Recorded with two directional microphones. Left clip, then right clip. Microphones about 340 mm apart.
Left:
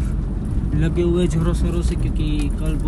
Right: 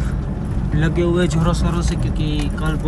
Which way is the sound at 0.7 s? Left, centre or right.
Centre.